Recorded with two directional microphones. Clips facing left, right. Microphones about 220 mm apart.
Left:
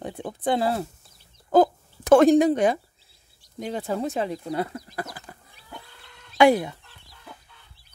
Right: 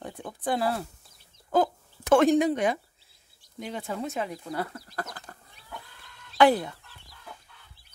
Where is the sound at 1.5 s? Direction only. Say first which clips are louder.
Left 6 dB; 35° left (ahead or behind); by 5.4 s 10° left (ahead or behind).